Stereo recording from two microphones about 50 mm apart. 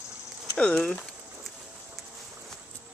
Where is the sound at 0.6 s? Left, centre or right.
Left.